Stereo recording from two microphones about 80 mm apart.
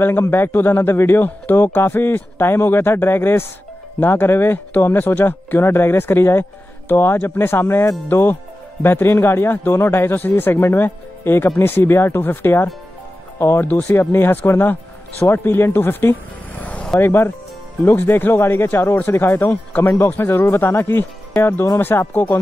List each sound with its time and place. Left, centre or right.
0.0 s speech: left
13.7 s speech: left
17.0 s speech: left